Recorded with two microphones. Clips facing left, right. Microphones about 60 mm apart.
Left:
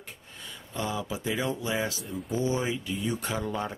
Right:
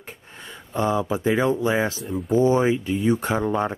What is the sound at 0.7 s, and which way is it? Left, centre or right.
Speech, right.